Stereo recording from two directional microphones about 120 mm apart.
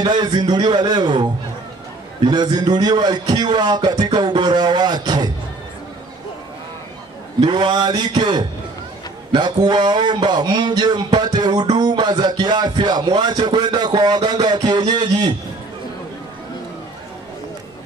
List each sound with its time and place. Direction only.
0.0 s music: 40° right (ahead or behind)
7.3 s music: 40° right (ahead or behind)